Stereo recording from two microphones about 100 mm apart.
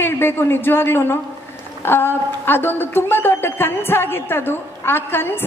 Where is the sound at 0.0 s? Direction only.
20° left (ahead or behind).